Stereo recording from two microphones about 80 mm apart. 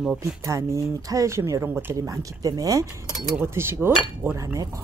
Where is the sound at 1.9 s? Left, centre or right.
Right.